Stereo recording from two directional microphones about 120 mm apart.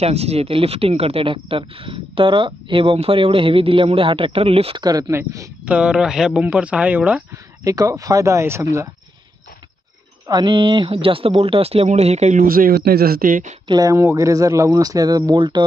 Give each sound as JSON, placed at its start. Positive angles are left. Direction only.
{"t": 0.0, "sound": "speech", "side_deg": -60}
{"t": 4.8, "sound": "speech", "side_deg": -35}
{"t": 5.7, "sound": "speech", "side_deg": -10}
{"t": 7.6, "sound": "speech", "side_deg": -30}
{"t": 10.2, "sound": "speech", "side_deg": -35}
{"t": 13.7, "sound": "speech", "side_deg": -30}